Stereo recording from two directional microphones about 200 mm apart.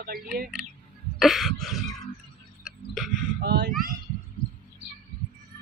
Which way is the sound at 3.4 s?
55° right (ahead or behind).